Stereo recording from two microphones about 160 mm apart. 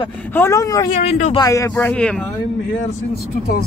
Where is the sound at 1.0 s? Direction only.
40° left (ahead or behind).